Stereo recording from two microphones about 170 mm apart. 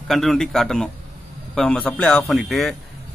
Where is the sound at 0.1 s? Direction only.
Centre (ahead or behind).